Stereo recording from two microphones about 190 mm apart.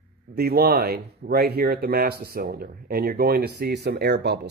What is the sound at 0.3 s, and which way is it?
Speech, 55° right (ahead or behind).